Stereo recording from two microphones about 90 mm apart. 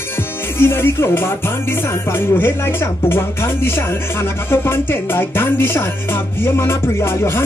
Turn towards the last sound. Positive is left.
turn(degrees=30)  # may be behind; listen again after turning